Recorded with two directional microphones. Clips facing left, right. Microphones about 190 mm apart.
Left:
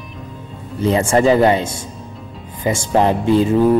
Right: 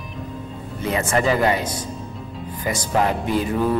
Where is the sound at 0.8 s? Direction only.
30° left (ahead or behind).